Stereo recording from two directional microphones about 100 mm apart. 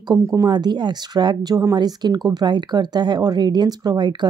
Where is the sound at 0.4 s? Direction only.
45° right (ahead or behind).